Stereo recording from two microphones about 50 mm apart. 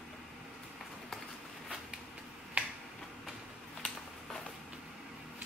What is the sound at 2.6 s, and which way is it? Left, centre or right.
Finger snapping, right.